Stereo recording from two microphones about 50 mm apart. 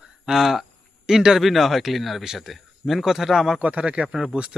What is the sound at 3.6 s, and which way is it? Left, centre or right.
Speech, right.